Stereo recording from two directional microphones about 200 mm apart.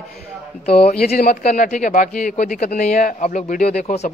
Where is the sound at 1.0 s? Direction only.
50° left (ahead or behind).